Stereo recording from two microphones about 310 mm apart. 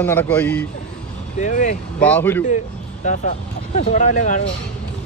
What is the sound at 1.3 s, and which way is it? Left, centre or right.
Speech, left.